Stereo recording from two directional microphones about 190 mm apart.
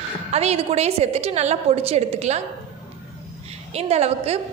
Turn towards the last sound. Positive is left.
turn(degrees=-35)  # may be behind; listen again after turning